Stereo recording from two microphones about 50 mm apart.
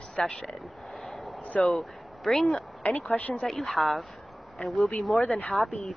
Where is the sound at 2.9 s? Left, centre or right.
Left.